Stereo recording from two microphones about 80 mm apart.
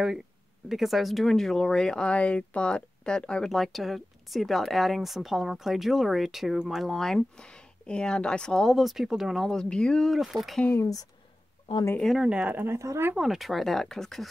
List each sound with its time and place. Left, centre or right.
0.7 s speech: centre
10.8 s speech: left
12.2 s speech: centre
12.5 s speech: right
13.1 s speech: centre